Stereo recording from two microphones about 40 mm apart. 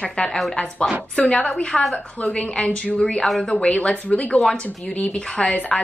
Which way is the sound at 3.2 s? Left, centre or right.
Centre.